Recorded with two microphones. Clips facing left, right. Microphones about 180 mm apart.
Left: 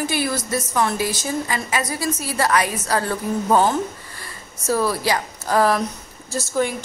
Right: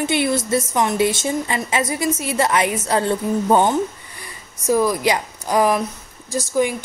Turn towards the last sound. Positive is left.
turn(degrees=-15)  # may be behind; listen again after turning